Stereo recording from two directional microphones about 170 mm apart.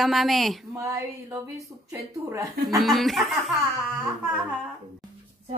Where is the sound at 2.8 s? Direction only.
Centre (ahead or behind).